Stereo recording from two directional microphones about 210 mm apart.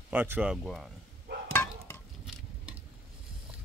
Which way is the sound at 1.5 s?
10° left (ahead or behind).